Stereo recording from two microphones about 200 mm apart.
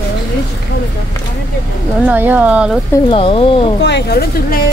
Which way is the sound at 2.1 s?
10° right (ahead or behind).